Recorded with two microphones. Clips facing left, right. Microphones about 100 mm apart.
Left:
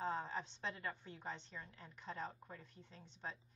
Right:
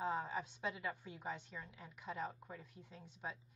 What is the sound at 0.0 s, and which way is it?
A woman's voice, 5° right (ahead or behind).